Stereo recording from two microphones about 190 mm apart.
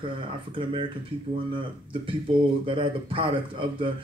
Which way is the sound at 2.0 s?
25° right (ahead or behind).